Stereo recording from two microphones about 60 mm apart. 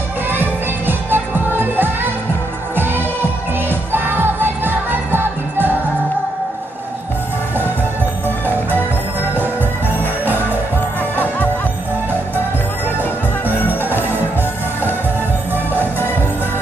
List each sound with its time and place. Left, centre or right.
0.3 s music: right
13.7 s music: right